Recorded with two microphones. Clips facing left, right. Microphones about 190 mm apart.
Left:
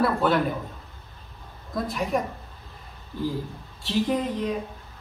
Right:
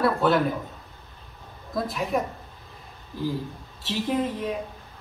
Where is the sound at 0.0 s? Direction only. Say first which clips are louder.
Right 1 dB; centre (ahead or behind).